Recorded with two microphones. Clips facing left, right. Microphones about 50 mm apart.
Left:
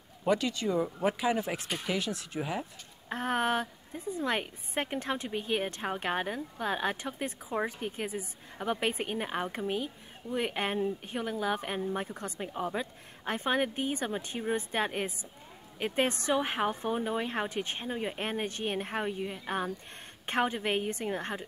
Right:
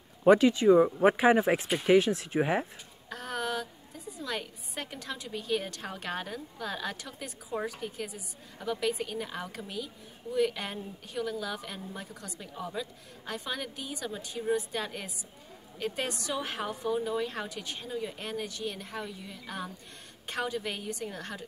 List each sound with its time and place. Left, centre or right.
0.2 s speech: right
3.1 s a woman's voice: left